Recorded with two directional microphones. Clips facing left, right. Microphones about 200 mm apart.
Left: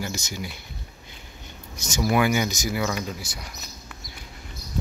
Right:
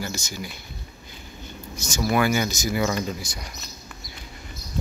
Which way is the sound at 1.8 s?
20° left (ahead or behind).